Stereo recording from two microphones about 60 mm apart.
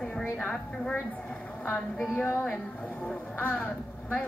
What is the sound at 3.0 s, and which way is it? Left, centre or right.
Speech, left.